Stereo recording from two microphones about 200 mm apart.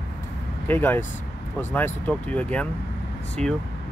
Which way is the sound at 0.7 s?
10° left (ahead or behind).